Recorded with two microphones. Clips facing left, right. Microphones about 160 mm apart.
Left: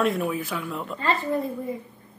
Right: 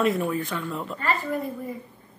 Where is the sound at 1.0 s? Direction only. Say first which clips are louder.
Left 3 dB; 30° left (ahead or behind).